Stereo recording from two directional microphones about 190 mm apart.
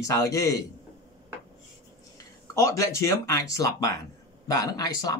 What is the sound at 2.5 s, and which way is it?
Speech, 15° left (ahead or behind).